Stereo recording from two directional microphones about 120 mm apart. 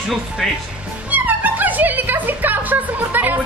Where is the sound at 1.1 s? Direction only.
15° right (ahead or behind).